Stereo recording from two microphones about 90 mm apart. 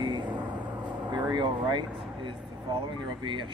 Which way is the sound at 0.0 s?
60° right (ahead or behind).